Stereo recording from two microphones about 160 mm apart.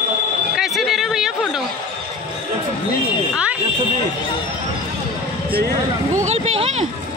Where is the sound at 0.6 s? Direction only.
Centre (ahead or behind).